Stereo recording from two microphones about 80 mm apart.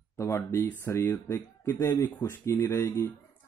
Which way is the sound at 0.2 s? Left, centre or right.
Left.